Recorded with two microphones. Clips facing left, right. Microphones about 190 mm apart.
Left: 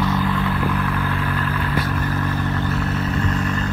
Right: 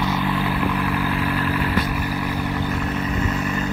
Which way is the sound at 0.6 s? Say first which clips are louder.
Right 1 dB; 5° right (ahead or behind).